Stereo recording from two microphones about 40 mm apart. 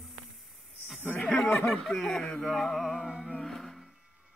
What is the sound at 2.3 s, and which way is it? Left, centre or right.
Speech, centre.